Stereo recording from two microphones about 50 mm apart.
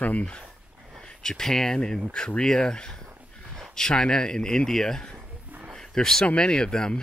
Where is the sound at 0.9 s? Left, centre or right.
Centre.